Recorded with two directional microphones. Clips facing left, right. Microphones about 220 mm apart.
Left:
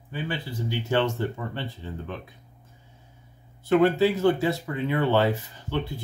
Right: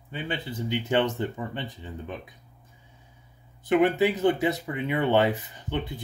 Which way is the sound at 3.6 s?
15° right (ahead or behind).